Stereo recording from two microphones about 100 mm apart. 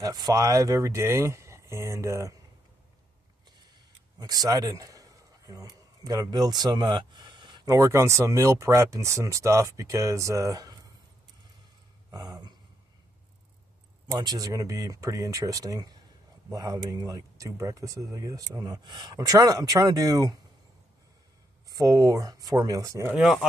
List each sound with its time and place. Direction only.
0.0 s speech: 40° right (ahead or behind)
4.2 s a man's voice: 40° right (ahead or behind)
7.6 s speech: 30° right (ahead or behind)
12.1 s a sound: 45° right (ahead or behind)
14.1 s speech: 40° right (ahead or behind)
21.6 s speech: 40° right (ahead or behind)
23.1 s speech: 5° right (ahead or behind)